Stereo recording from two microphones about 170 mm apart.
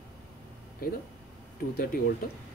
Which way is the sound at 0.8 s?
60° left (ahead or behind).